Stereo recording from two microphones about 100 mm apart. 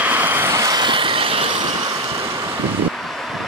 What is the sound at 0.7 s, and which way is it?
Vehicle, 55° right (ahead or behind).